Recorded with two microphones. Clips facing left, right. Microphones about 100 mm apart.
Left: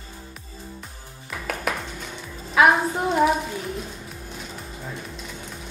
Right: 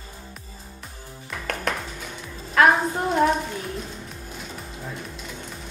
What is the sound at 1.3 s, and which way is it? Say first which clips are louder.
Music: even; centre (ahead or behind).